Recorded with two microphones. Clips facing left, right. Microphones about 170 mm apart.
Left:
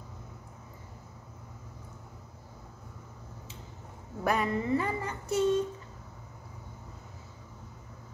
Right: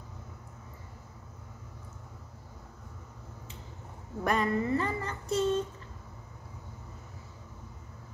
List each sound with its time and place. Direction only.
4.2 s speech: 5° left (ahead or behind)